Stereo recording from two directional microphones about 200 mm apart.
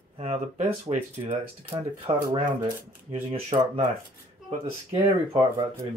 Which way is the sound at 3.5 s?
25° right (ahead or behind).